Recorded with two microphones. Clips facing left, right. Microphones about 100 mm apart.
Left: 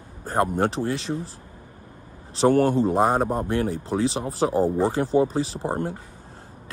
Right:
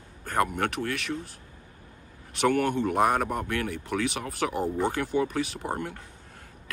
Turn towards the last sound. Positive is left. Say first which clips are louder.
# left 5 dB
turn(degrees=30)  # may be behind; listen again after turning